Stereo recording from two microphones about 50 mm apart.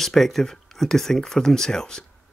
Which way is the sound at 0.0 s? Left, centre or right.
Centre.